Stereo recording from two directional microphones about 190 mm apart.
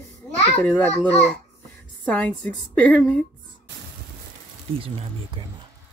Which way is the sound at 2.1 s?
10° left (ahead or behind).